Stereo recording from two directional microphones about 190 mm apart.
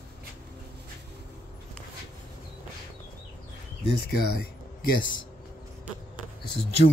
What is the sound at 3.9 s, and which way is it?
Speech, 55° left (ahead or behind).